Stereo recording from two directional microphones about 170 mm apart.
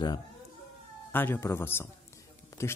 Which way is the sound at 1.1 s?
10° left (ahead or behind).